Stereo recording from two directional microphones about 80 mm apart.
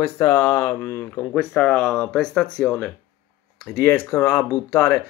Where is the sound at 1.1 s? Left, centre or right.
Centre.